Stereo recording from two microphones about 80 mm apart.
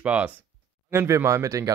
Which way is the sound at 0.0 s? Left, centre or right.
Centre.